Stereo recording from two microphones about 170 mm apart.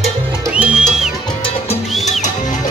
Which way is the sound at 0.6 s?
5° right (ahead or behind).